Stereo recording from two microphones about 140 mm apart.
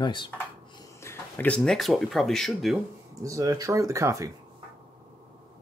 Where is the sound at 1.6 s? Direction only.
Centre (ahead or behind).